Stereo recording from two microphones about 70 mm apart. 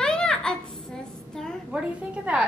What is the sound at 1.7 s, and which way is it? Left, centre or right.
Speech, centre.